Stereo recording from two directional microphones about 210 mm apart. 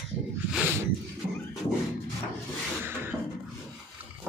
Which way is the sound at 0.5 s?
5° right (ahead or behind).